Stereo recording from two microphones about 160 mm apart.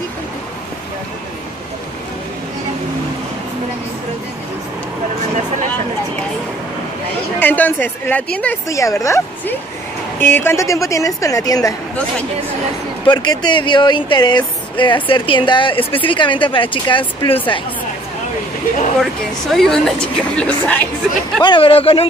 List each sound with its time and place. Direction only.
7.3 s speech: 10° left (ahead or behind)
8.6 s speech: 20° left (ahead or behind)
13.0 s a woman's voice: 25° left (ahead or behind)
19.5 s a woman's voice: centre (ahead or behind)
21.4 s a woman's voice: 30° left (ahead or behind)